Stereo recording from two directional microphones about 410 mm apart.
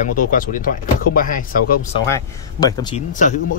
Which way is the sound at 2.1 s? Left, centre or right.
Centre.